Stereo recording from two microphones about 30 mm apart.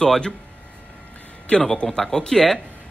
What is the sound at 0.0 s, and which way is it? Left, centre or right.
Speech, left.